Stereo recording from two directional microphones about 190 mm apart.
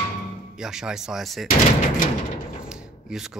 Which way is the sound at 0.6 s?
5° right (ahead or behind).